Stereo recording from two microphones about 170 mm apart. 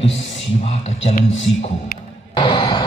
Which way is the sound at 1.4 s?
90° left.